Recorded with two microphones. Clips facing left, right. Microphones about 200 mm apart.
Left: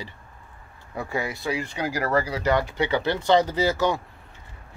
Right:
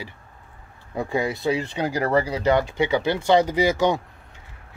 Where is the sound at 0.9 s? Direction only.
20° right (ahead or behind).